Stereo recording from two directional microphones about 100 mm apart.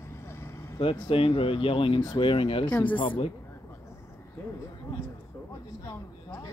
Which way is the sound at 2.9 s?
55° left (ahead or behind).